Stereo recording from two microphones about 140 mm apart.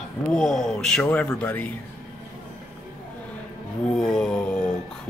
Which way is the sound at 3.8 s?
5° left (ahead or behind).